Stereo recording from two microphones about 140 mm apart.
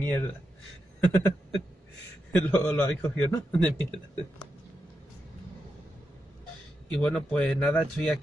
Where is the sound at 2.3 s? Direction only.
10° left (ahead or behind).